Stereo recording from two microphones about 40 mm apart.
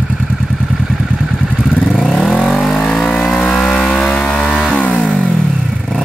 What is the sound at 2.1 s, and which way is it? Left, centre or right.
Vehicle, left.